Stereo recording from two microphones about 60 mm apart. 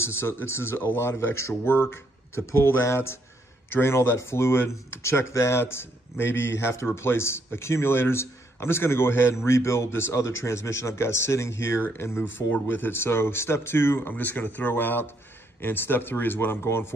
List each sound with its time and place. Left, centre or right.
0.0 s a man's voice: left